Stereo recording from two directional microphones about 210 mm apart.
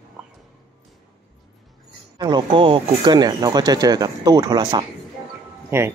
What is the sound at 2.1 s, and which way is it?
Speech, 20° right (ahead or behind).